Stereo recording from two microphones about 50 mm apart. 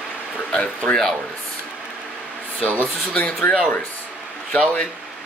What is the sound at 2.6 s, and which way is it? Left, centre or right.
Speech, left.